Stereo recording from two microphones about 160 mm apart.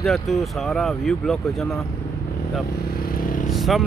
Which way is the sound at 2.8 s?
65° left (ahead or behind).